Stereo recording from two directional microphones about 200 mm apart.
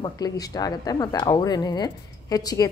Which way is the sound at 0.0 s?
20° left (ahead or behind).